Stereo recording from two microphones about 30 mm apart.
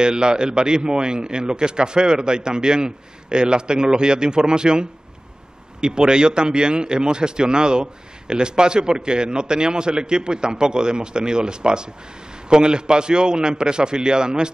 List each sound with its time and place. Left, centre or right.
0.0 s speech: right